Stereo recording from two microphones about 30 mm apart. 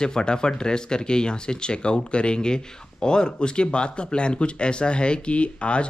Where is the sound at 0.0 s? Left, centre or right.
Left.